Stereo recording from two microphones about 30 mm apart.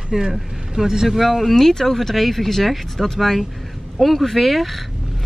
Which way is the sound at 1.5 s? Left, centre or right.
Centre.